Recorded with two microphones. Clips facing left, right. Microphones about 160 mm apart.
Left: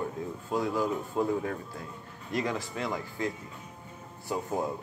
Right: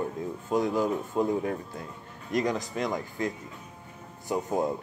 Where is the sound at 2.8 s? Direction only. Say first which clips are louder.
Right 3 dB; 20° right (ahead or behind).